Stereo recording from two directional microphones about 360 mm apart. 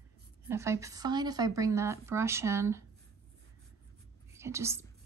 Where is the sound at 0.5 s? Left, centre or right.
Centre.